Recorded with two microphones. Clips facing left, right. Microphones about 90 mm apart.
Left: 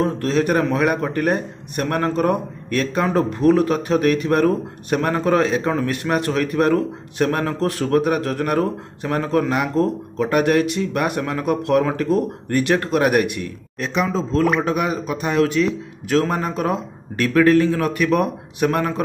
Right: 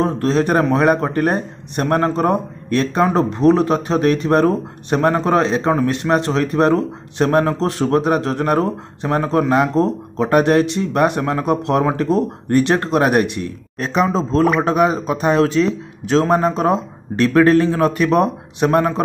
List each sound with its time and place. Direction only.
0.0 s a man's voice: 30° right (ahead or behind)